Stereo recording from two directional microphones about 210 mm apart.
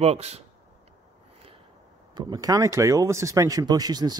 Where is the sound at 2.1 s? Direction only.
20° right (ahead or behind).